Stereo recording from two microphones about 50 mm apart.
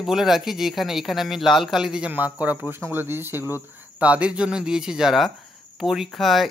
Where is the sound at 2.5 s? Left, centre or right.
Right.